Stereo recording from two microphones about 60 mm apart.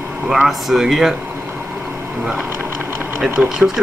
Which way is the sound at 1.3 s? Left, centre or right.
Right.